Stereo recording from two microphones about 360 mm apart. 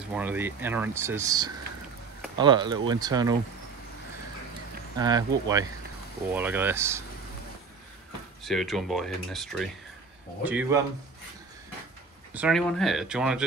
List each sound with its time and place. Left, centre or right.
0.1 s speech: centre
4.9 s speech: centre
8.5 s speech: centre
12.4 s speech: centre